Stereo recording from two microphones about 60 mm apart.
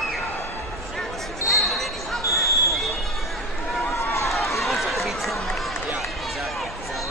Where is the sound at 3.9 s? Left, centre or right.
Left.